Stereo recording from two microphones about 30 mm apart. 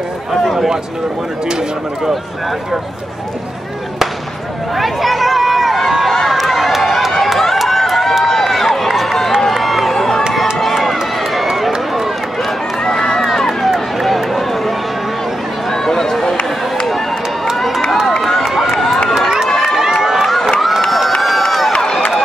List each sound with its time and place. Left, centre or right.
4.7 s run: centre
9.9 s crowd: centre
10.3 s run: centre
14.0 s run: centre
15.7 s a sound: centre
18.4 s run: centre
19.1 s crowd: centre
20.0 s run: centre
21.5 s run: centre